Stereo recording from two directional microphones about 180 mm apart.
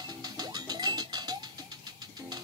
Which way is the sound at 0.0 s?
20° right (ahead or behind).